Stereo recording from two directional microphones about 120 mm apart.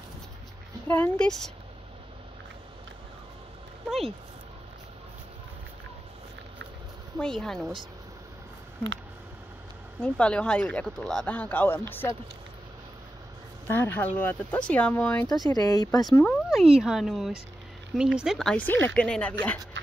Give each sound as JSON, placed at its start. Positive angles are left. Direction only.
{"t": 0.8, "sound": "speech", "side_deg": 15}
{"t": 7.2, "sound": "speech", "side_deg": 5}
{"t": 9.9, "sound": "speech", "side_deg": 10}
{"t": 13.7, "sound": "speech", "side_deg": 15}
{"t": 15.2, "sound": "speech", "side_deg": 30}
{"t": 16.4, "sound": "speech", "side_deg": -5}
{"t": 18.7, "sound": "speech", "side_deg": 15}